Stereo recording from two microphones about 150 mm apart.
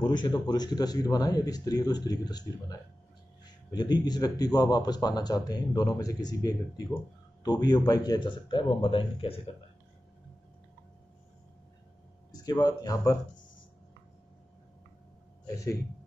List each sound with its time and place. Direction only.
0.0 s a man's voice: 30° left (ahead or behind)
12.3 s speech: 25° left (ahead or behind)
15.4 s a man's voice: 20° left (ahead or behind)